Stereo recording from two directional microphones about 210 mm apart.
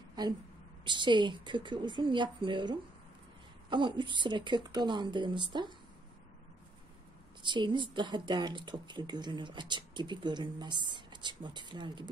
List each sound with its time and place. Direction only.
0.8 s speech: 20° right (ahead or behind)
7.4 s speech: 20° right (ahead or behind)